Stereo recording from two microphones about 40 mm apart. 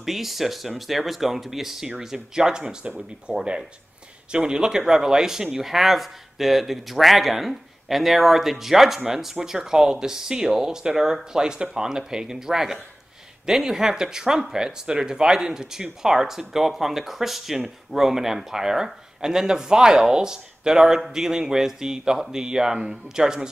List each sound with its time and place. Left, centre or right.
0.0 s speech: centre